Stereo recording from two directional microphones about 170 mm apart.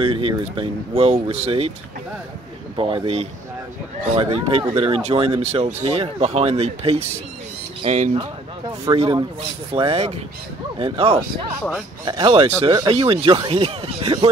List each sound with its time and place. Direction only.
0.0 s speech: 30° right (ahead or behind)
2.7 s speech: 30° right (ahead or behind)